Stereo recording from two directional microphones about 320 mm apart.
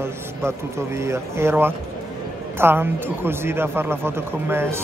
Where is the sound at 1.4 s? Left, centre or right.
Centre.